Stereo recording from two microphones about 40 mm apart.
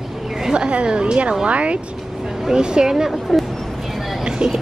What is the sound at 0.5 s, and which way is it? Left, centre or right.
A woman's voice, right.